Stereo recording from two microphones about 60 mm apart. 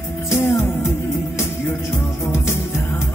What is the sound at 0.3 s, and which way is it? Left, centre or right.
Music, left.